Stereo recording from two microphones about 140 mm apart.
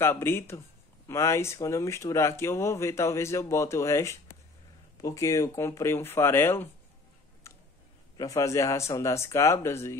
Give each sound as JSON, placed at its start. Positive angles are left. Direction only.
{"t": 0.0, "sound": "speech", "side_deg": 15}
{"t": 8.2, "sound": "speech", "side_deg": 25}